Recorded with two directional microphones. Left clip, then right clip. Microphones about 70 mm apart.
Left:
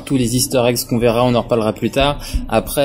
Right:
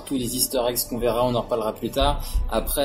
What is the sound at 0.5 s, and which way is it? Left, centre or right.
Speech, right.